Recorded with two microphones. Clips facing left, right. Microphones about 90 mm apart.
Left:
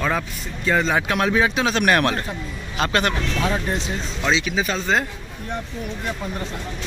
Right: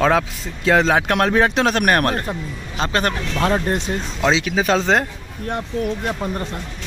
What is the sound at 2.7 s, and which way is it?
Speech, 30° right (ahead or behind).